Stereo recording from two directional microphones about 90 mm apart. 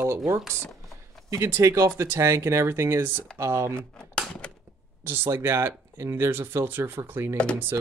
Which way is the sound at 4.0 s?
10° left (ahead or behind).